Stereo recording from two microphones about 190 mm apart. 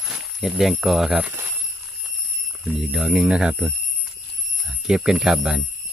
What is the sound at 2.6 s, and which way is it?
Speech, centre (ahead or behind).